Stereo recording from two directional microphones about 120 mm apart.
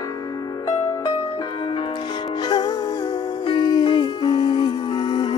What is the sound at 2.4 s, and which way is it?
Music, 35° left (ahead or behind).